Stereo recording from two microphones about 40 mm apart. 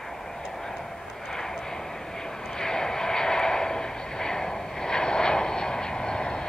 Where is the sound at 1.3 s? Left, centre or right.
Centre.